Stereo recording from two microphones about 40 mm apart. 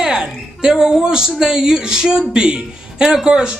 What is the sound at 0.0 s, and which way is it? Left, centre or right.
Speech, centre.